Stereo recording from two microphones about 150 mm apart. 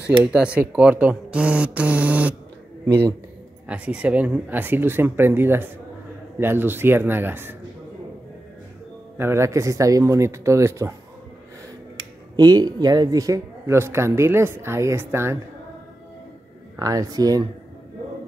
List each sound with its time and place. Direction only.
0.2 s speech: 5° right (ahead or behind)
9.2 s speech: 20° right (ahead or behind)
12.4 s speech: 30° right (ahead or behind)
16.7 s speech: 25° right (ahead or behind)